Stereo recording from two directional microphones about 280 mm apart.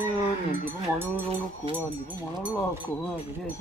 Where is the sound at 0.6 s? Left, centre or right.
Centre.